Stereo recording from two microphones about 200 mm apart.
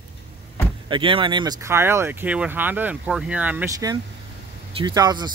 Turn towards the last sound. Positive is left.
turn(degrees=-20)  # may be behind; listen again after turning